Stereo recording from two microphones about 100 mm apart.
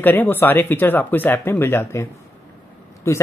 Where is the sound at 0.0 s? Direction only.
20° left (ahead or behind).